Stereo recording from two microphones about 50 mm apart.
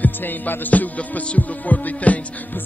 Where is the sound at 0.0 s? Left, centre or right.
Left.